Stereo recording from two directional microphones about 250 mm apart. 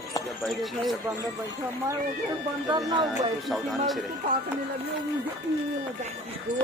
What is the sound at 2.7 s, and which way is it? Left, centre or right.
Speech, centre.